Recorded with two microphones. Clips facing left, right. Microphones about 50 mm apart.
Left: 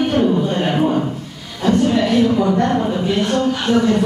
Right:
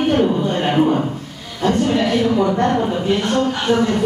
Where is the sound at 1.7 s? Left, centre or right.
Right.